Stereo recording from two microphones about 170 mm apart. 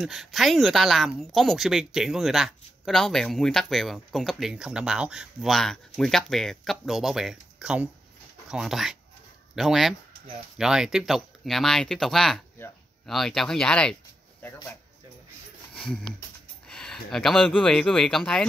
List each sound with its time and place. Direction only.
0.0 s speech: centre (ahead or behind)
15.7 s a sound: 5° left (ahead or behind)
17.6 s speech: centre (ahead or behind)